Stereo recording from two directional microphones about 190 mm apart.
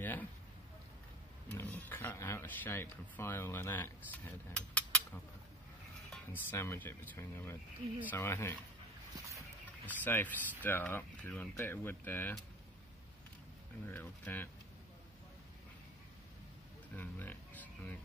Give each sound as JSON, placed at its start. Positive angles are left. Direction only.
{"t": 0.0, "sound": "a sound", "side_deg": 10}
{"t": 1.5, "sound": "speech", "side_deg": 10}
{"t": 6.3, "sound": "speech", "side_deg": 15}
{"t": 9.8, "sound": "speech", "side_deg": 10}
{"t": 13.8, "sound": "speech", "side_deg": 10}
{"t": 16.9, "sound": "speech", "side_deg": 10}